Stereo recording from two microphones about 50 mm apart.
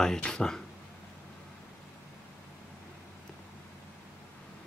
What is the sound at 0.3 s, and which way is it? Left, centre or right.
Speech, centre.